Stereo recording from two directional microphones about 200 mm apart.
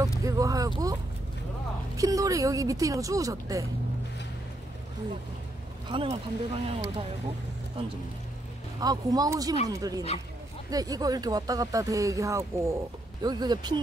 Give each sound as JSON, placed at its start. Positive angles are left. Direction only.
{"t": 0.2, "sound": "a sound", "side_deg": -15}
{"t": 2.0, "sound": "speech", "side_deg": -15}
{"t": 5.9, "sound": "speech", "side_deg": -25}
{"t": 8.7, "sound": "speech", "side_deg": -20}